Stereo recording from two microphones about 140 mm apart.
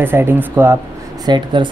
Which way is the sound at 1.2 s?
35° right (ahead or behind).